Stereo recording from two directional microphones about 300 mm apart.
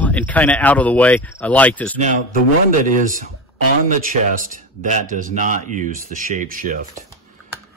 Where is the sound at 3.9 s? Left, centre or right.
Right.